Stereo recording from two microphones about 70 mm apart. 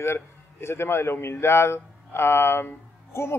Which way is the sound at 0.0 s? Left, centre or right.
Left.